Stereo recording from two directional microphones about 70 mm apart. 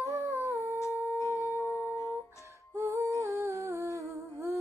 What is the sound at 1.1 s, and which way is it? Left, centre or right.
Music, left.